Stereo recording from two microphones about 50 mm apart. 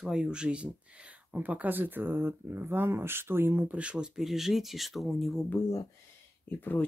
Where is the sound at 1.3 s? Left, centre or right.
Right.